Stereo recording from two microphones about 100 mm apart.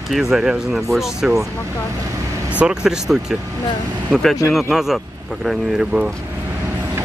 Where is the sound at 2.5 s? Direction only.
5° right (ahead or behind).